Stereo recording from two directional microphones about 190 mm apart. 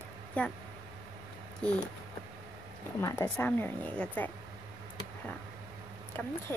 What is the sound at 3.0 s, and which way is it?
Speech, 15° left (ahead or behind).